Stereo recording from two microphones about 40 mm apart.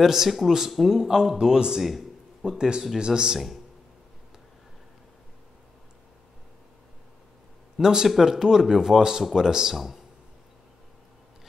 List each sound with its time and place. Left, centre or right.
0.0 s speech: centre
1.8 s speech: centre
2.4 s speech: centre
7.7 s speech: centre